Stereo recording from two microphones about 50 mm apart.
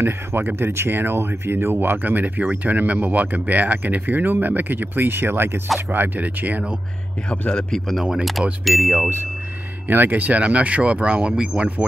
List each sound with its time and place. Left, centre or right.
0.6 s speech: right
7.2 s a man's voice: left
8.0 s speech: centre
9.8 s speech: right; by 11.7 s centre